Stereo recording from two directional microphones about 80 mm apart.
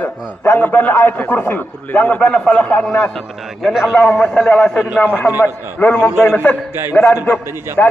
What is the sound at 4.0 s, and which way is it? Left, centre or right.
A man's voice, centre.